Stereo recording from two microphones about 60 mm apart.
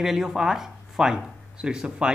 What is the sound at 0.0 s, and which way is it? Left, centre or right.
Speech, centre.